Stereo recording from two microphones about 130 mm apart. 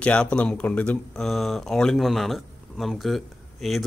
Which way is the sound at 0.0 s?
10° left (ahead or behind).